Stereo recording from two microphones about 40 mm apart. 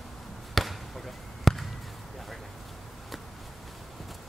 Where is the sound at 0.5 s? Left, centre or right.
Centre.